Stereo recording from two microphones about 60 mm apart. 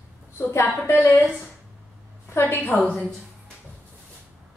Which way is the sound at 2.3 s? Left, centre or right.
Left.